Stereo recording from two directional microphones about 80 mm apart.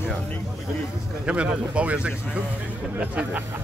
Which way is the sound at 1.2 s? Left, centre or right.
Centre.